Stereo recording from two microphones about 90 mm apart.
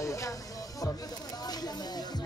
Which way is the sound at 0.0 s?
35° left (ahead or behind).